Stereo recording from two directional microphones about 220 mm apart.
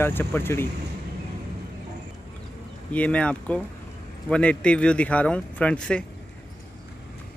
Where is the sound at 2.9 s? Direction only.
5° left (ahead or behind).